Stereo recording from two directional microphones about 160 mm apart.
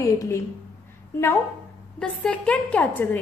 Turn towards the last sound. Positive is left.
turn(degrees=10)  # may be behind; listen again after turning